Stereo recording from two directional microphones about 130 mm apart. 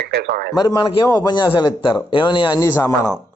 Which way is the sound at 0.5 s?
30° left (ahead or behind).